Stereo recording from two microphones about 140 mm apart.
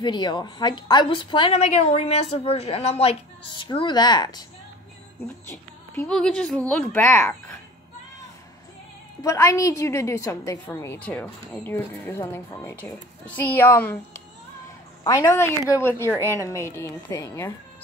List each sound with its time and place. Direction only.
0.0 s a woman's voice: 30° left (ahead or behind)
1.6 s a woman's voice: 50° left (ahead or behind)
3.6 s a woman's voice: 30° left (ahead or behind)
6.0 s a woman's voice: 5° left (ahead or behind)
6.8 s a child's voice: 15° left (ahead or behind)
9.2 s a woman's voice: 25° left (ahead or behind)
15.0 s a woman's voice: 20° left (ahead or behind)